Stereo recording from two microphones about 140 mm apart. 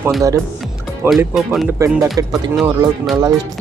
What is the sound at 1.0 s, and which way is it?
Speech, centre (ahead or behind).